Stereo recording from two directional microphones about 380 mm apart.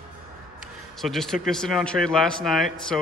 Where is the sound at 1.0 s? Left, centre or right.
Centre.